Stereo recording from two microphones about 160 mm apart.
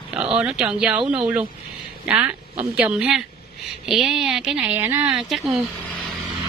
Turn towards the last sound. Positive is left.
turn(degrees=-5)  # may be behind; listen again after turning